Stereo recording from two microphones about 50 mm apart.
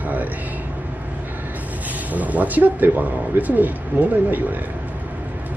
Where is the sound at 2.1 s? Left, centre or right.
Right.